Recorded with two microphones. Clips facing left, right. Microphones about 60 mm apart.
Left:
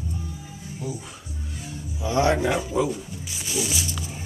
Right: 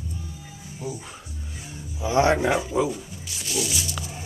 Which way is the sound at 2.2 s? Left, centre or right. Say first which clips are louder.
Right 1 dB; right.